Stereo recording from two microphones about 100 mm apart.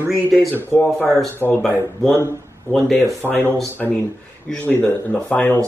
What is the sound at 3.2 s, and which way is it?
Speech, 20° left (ahead or behind).